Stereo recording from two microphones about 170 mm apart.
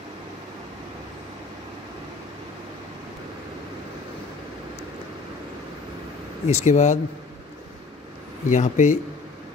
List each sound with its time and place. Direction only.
6.4 s speech: 40° left (ahead or behind)
8.5 s speech: 45° left (ahead or behind)